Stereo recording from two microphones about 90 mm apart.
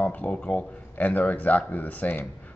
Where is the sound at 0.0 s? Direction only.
15° left (ahead or behind).